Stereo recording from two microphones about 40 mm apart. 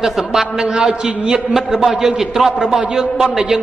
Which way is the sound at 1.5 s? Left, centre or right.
Centre.